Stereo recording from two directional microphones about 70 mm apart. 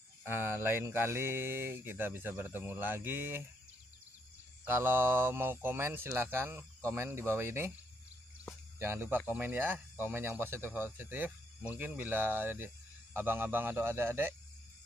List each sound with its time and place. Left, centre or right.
0.2 s speech: right
4.6 s speech: right
8.7 s speech: right